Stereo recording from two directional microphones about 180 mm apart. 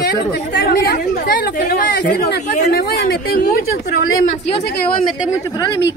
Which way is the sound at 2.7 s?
60° left (ahead or behind).